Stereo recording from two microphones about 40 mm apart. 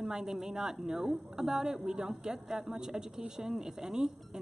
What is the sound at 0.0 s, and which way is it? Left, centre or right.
A woman's voice, centre.